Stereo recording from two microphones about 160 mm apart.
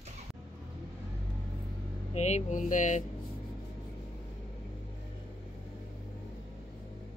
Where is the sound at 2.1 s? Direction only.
45° left (ahead or behind).